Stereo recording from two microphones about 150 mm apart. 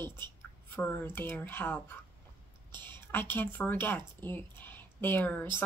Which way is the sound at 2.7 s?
30° right (ahead or behind).